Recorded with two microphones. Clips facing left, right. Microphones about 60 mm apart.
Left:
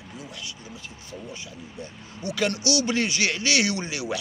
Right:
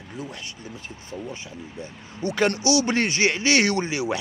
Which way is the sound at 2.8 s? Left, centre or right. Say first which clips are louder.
Right 3 dB; right.